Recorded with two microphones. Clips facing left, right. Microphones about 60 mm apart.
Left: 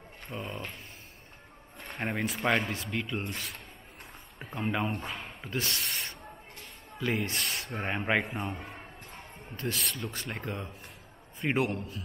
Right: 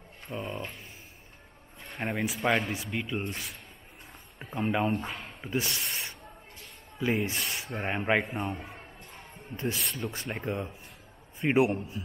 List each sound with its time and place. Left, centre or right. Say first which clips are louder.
0.3 s speech: right 3 dB; centre
2.0 s speech: right 1 dB; centre
10.1 s a man's voice: right 3 dB; centre